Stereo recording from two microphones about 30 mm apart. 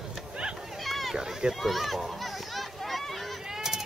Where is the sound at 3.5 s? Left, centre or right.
Centre.